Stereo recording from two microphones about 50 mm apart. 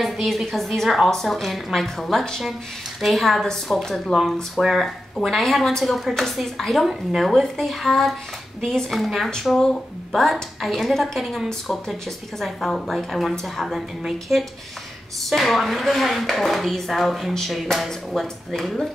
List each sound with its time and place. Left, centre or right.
0.0 s a woman's voice: centre